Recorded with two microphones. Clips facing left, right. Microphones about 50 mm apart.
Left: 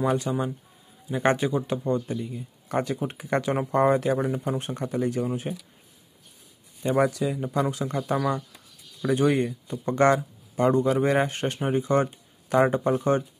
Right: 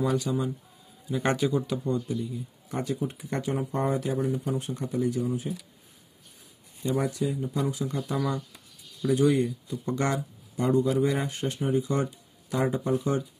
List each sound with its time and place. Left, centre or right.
0.0 s speech: left
7.0 s speech: left
8.0 s speech: left